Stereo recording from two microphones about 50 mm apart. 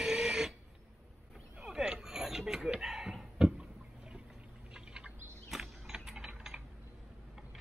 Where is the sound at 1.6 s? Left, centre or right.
Centre.